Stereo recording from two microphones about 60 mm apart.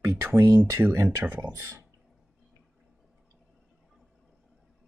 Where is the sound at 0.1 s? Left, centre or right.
Right.